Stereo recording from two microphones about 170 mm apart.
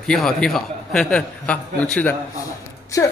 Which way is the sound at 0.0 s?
5° left (ahead or behind).